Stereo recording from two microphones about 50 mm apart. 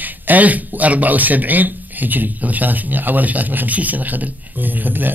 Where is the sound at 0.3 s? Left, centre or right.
Right.